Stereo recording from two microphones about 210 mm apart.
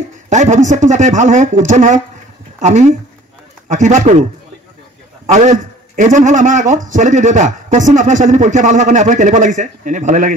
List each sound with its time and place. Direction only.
0.3 s speech: 35° right (ahead or behind)
3.6 s speech: 35° right (ahead or behind)